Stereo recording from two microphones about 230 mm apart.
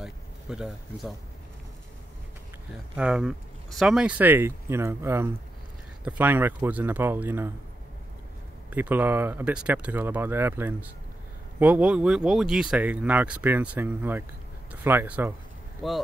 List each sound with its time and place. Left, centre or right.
0.0 s a sound: centre
3.0 s speech: centre
8.6 s speech: centre